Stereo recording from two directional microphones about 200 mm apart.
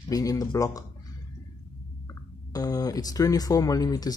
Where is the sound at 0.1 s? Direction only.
15° left (ahead or behind).